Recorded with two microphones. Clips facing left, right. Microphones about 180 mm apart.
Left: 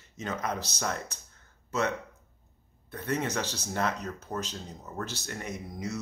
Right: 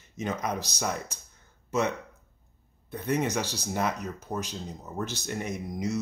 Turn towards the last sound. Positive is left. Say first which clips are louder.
# right 5 dB
turn(degrees=-20)  # may be behind; listen again after turning